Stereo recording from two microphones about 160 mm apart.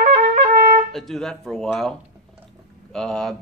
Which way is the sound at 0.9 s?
Centre (ahead or behind).